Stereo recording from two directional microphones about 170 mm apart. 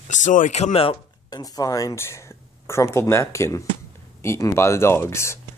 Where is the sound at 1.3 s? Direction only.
20° left (ahead or behind).